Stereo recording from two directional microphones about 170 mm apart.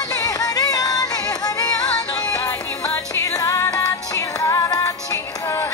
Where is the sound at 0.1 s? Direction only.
20° left (ahead or behind).